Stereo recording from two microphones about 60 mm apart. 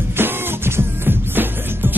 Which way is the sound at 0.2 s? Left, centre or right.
Right.